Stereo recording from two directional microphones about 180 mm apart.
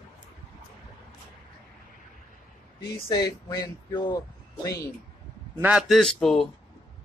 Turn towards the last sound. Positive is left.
turn(degrees=0)  # may be behind; listen again after turning